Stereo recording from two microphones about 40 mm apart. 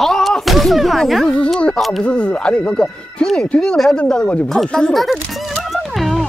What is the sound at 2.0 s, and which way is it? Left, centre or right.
Speech, left.